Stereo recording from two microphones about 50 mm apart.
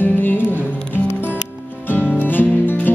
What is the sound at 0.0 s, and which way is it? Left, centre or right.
Music, left.